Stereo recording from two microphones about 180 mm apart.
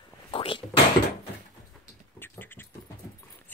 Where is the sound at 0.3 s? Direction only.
30° left (ahead or behind).